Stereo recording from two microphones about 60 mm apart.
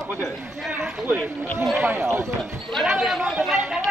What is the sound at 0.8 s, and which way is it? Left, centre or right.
Speech, right.